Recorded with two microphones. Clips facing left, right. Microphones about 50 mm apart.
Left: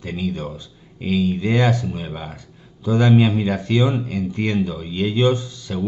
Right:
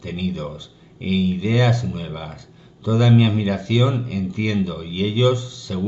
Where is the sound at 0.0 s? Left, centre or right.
Left.